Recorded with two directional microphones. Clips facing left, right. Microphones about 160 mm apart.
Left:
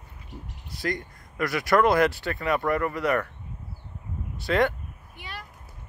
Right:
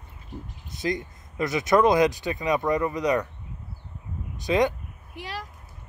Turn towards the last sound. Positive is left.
turn(degrees=-90)